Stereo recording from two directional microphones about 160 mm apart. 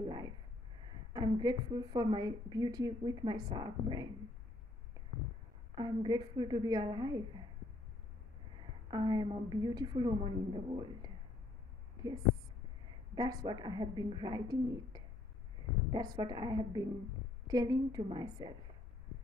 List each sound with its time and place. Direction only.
1.1 s a woman's voice: 25° right (ahead or behind)
5.8 s a woman's voice: 25° right (ahead or behind)
8.9 s a woman's voice: 25° right (ahead or behind)
12.0 s a sound: 25° right (ahead or behind)
13.1 s a woman's voice: 25° right (ahead or behind)